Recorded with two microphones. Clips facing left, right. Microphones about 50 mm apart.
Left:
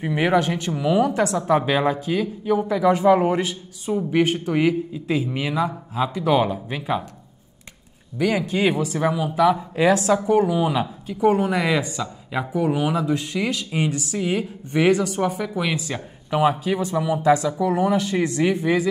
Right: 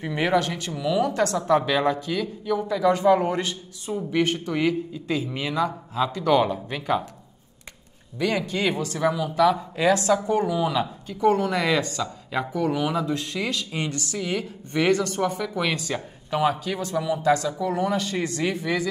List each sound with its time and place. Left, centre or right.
0.0 s speech: centre
8.2 s speech: centre